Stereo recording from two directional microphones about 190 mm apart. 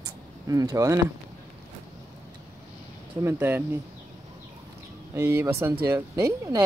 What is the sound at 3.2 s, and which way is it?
Speech, 10° right (ahead or behind).